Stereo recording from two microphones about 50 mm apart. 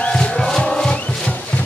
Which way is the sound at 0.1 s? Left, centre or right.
Centre.